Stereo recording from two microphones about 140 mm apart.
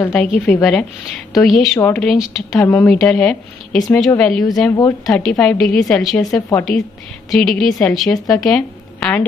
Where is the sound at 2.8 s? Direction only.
Centre (ahead or behind).